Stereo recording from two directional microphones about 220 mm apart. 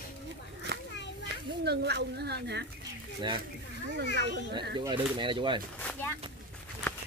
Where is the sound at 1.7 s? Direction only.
50° right (ahead or behind).